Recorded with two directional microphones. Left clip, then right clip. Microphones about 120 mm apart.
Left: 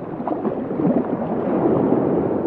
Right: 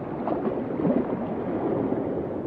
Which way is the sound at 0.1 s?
55° right (ahead or behind).